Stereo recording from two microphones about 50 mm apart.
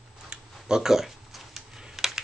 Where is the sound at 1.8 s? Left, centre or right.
Centre.